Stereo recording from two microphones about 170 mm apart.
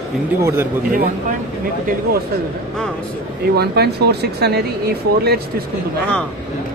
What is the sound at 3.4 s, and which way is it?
Speech, 70° right (ahead or behind).